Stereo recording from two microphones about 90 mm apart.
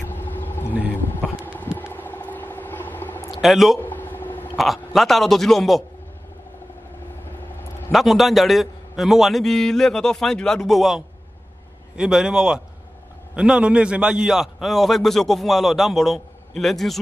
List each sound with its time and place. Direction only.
0.0 s a sound: 20° left (ahead or behind)
1.4 s vehicle: 20° left (ahead or behind)
3.3 s speech: centre (ahead or behind)
3.8 s a sound: 20° left (ahead or behind)
4.6 s a man's voice: centre (ahead or behind)
7.9 s a man's voice: centre (ahead or behind)